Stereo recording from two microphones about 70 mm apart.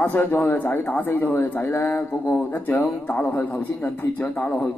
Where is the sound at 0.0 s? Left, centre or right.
Left.